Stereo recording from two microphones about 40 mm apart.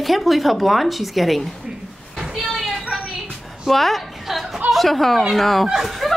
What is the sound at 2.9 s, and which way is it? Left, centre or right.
Music, centre.